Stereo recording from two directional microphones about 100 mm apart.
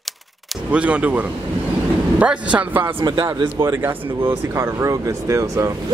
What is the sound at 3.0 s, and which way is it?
Speech, 50° right (ahead or behind).